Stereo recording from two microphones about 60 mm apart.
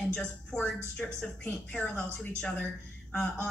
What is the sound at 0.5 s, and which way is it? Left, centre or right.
Speech, centre.